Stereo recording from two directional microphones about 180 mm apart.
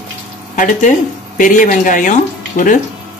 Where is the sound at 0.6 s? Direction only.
45° left (ahead or behind).